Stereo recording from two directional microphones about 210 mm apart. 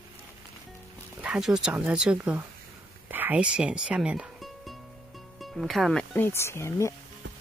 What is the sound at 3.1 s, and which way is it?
Music, 10° right (ahead or behind).